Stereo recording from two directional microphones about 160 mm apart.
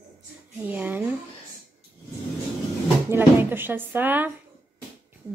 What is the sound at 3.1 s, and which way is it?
A woman's voice, 15° right (ahead or behind).